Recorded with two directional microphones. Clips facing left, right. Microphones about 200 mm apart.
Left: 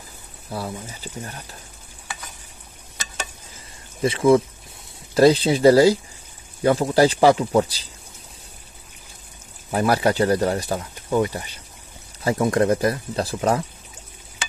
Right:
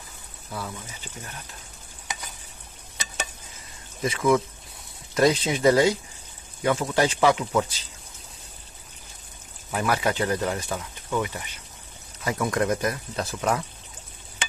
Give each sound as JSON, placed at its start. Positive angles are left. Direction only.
{"t": 0.5, "sound": "speech", "side_deg": 35}
{"t": 4.0, "sound": "speech", "side_deg": 30}
{"t": 9.7, "sound": "speech", "side_deg": 35}